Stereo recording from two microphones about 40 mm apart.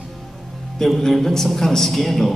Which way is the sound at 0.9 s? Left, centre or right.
Centre.